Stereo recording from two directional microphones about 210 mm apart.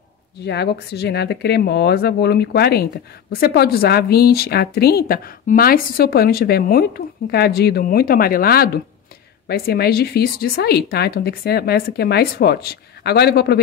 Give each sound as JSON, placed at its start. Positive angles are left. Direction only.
{"t": 0.5, "sound": "speech", "side_deg": 50}